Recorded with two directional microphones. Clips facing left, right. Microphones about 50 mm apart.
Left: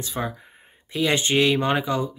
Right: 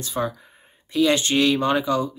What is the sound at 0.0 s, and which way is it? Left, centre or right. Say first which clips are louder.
Speech: right 3 dB; centre.